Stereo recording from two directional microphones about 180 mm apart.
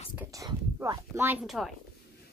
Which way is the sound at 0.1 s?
15° right (ahead or behind).